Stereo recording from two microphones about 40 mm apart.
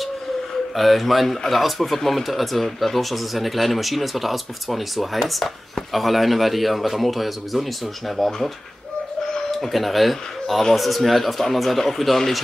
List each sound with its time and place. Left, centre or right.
0.7 s speech: centre